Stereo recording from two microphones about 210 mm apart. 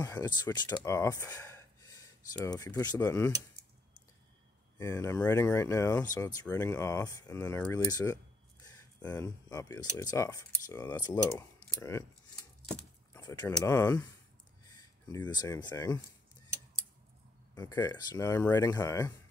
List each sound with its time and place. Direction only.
0.0 s speech: 20° left (ahead or behind)
4.7 s speech: 15° left (ahead or behind)
12.6 s keys jangling: 15° left (ahead or behind)
13.7 s speech: 15° left (ahead or behind)
17.6 s speech: 20° left (ahead or behind)